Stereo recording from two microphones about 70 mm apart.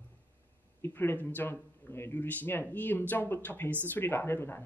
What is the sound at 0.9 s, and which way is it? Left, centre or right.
Speech, left.